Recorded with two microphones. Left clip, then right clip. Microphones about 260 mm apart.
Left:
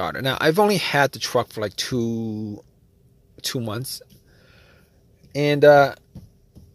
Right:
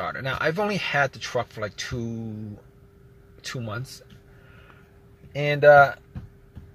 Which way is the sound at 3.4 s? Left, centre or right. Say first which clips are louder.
Left 6 dB; left.